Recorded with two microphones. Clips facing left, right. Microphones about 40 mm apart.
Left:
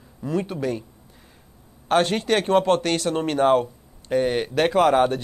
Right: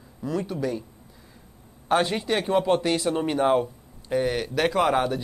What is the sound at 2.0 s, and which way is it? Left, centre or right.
Speech, left.